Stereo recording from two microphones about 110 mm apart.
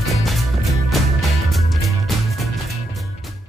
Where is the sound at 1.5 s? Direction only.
Centre (ahead or behind).